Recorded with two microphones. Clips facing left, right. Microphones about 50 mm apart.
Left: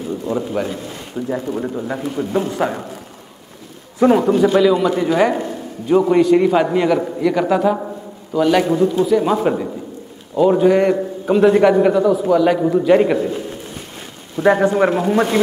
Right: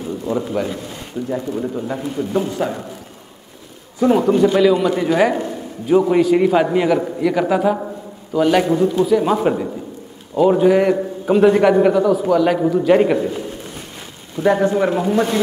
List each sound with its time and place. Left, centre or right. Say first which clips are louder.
0.3 s a man's voice: right 1 dB; centre
1.3 s a man's voice: even; centre
4.0 s a man's voice: left 2 dB; left
4.4 s a man's voice: even; centre
14.3 s a man's voice: left 1 dB; left